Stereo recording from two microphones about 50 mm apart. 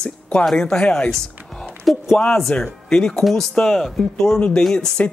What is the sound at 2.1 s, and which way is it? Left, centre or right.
Speech, centre.